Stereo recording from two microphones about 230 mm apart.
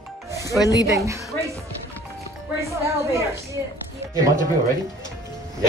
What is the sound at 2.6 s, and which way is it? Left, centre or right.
A woman's voice, centre.